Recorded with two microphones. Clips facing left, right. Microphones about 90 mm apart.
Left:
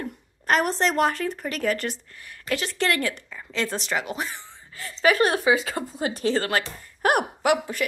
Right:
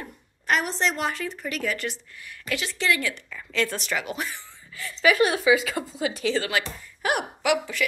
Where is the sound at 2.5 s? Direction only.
45° left (ahead or behind).